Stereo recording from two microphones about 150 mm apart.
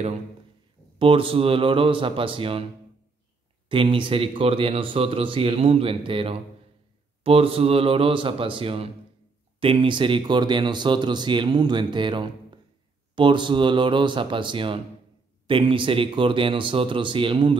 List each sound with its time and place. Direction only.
0.9 s speech: 35° right (ahead or behind)
3.6 s speech: 35° right (ahead or behind)